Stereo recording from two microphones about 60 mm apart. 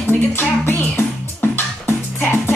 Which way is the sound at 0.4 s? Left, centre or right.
Left.